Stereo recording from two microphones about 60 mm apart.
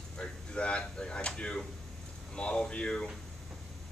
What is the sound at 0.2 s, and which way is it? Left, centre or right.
Speech, centre.